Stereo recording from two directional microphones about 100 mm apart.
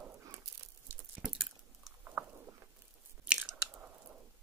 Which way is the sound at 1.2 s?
5° right (ahead or behind).